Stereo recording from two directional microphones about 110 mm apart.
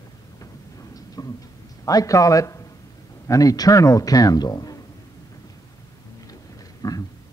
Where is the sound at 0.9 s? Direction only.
35° left (ahead or behind).